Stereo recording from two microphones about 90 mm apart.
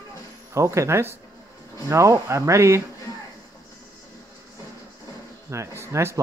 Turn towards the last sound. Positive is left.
turn(degrees=-30)  # may be behind; listen again after turning